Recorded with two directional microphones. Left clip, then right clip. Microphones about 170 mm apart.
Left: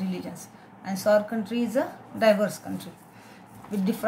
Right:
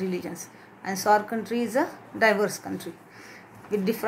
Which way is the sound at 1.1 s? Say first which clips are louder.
Even; 40° right (ahead or behind).